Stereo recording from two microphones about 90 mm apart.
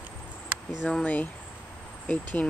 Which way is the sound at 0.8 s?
15° left (ahead or behind).